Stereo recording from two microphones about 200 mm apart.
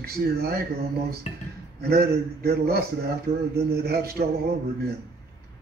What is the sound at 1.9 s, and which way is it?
Speech, 50° right (ahead or behind).